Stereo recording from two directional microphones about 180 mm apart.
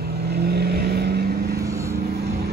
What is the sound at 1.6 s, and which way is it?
Vehicle, 15° right (ahead or behind).